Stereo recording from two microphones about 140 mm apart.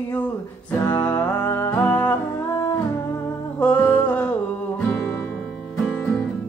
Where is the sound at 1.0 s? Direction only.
15° left (ahead or behind).